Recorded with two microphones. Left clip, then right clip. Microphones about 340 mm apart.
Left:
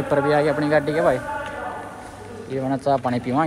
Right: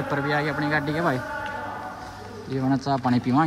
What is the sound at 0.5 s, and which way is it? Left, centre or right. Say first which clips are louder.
Speech: left 5 dB; centre.